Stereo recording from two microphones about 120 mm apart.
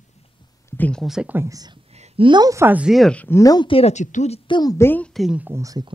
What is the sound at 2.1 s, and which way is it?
Speech, 40° right (ahead or behind).